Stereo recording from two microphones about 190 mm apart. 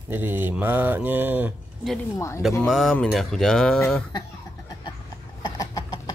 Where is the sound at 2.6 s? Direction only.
Centre (ahead or behind).